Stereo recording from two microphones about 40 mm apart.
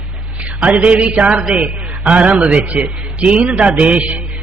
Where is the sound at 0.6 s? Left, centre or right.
Right.